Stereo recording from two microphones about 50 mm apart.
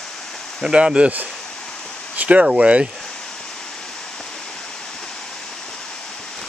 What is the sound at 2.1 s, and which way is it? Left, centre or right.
Speech, right.